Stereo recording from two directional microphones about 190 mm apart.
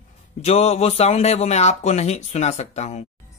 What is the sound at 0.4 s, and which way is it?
Speech, 35° left (ahead or behind).